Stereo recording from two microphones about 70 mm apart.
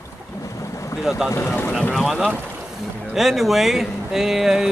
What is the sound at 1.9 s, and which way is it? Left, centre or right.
Speech, centre.